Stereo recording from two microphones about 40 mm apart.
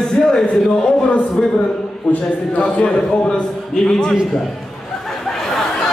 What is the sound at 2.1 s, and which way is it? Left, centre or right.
A man's voice, left.